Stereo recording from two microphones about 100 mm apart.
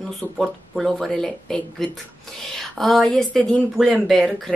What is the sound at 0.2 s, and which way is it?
A woman's voice, centre (ahead or behind).